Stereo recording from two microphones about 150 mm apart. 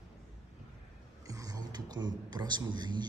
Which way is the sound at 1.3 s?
25° right (ahead or behind).